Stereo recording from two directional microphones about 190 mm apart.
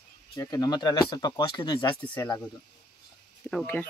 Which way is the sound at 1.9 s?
10° left (ahead or behind).